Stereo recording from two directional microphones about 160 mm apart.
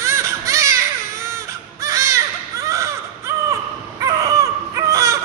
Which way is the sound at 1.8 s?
20° right (ahead or behind).